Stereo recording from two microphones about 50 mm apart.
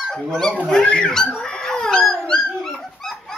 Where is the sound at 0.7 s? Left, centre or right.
Centre.